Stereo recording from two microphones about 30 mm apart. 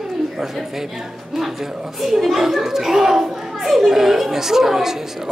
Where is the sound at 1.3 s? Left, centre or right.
Centre.